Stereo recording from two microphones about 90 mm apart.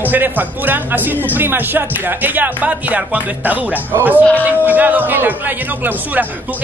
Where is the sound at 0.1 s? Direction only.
20° right (ahead or behind).